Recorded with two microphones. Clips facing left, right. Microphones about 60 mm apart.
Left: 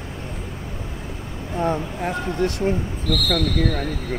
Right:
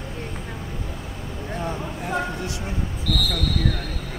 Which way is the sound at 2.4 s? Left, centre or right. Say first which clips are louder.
Left 8 dB; left.